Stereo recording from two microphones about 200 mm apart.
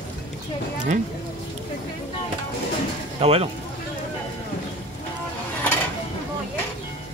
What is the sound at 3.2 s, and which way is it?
Speech, 30° right (ahead or behind).